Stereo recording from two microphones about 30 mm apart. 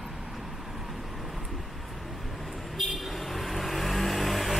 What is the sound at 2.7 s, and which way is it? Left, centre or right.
Vehicle, centre.